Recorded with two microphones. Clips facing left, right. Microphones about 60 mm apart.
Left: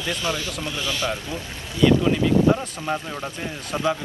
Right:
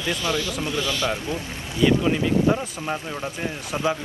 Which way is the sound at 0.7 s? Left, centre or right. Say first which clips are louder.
Right 1 dB; right.